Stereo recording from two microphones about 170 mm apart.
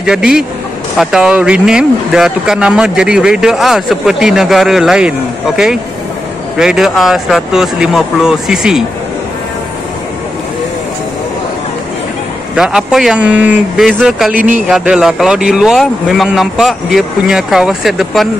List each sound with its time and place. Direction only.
0.0 s speech: 5° right (ahead or behind)
6.6 s speech: 5° right (ahead or behind)
12.5 s speech: 5° right (ahead or behind)
14.3 s speech: 50° right (ahead or behind)
14.7 s speech: 5° right (ahead or behind)